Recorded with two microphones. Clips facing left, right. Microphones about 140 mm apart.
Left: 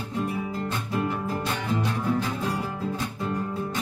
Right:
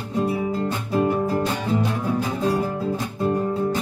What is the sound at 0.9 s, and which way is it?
Music, 35° right (ahead or behind).